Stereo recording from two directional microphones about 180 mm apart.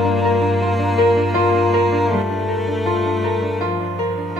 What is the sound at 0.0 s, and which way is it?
Music, centre (ahead or behind).